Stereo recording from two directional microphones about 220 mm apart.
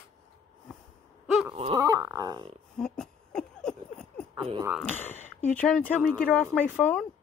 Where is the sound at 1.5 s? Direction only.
20° right (ahead or behind).